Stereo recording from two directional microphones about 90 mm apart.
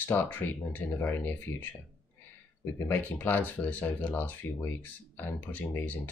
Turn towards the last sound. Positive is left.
turn(degrees=20)  # may be behind; listen again after turning